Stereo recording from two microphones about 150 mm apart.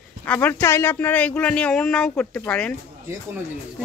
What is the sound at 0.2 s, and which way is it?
Speech, 15° left (ahead or behind).